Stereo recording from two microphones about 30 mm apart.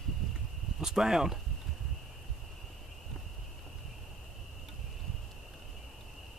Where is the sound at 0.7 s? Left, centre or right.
Centre.